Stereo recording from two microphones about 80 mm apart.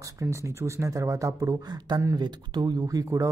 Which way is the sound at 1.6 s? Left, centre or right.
Right.